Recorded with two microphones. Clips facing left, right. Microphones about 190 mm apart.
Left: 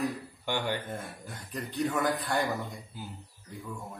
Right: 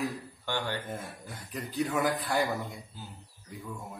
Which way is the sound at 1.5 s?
Centre (ahead or behind).